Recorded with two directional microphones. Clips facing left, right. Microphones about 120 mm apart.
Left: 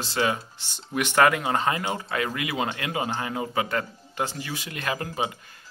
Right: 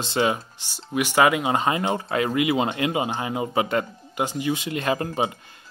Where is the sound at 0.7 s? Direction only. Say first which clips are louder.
Right 2 dB; 10° right (ahead or behind).